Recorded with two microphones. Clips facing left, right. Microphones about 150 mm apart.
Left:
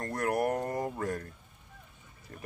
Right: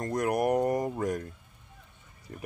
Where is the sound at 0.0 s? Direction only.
20° right (ahead or behind).